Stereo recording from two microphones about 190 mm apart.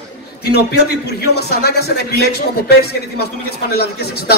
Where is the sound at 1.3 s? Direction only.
60° left (ahead or behind).